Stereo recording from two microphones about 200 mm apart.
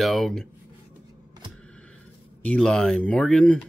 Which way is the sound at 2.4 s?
5° left (ahead or behind).